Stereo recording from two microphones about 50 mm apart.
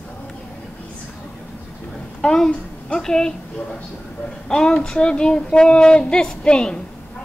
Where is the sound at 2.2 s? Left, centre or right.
Centre.